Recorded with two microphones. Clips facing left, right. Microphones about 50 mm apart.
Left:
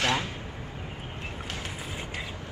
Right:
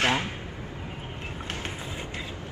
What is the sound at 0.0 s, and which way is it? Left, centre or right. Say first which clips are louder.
Vehicle: right 2 dB; right.